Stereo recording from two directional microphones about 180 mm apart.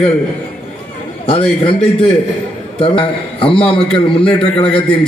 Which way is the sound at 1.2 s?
30° left (ahead or behind).